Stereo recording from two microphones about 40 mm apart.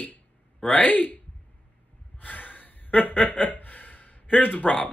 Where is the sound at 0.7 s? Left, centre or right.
Left.